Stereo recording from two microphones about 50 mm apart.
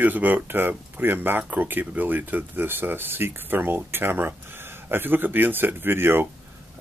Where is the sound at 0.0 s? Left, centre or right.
Right.